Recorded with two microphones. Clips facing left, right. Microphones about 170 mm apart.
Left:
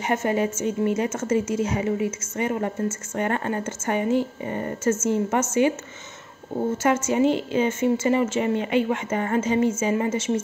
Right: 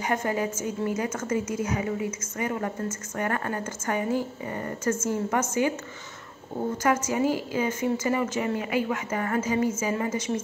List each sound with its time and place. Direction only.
0.0 s a woman's voice: 25° left (ahead or behind)
6.8 s a woman's voice: 25° left (ahead or behind)